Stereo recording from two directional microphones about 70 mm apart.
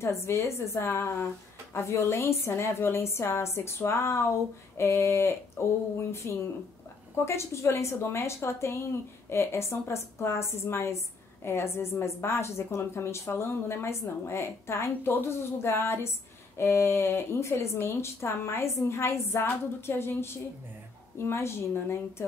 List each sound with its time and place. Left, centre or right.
0.0 s a woman's voice: left